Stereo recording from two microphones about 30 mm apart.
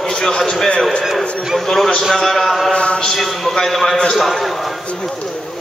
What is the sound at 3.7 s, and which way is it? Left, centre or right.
Speech, centre.